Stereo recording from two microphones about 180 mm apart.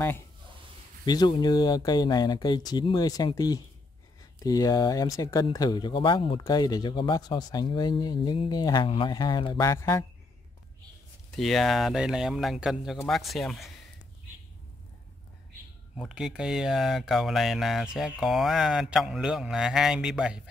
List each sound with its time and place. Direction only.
1.0 s speech: 25° left (ahead or behind)
11.3 s speech: centre (ahead or behind)
16.0 s speech: 5° right (ahead or behind)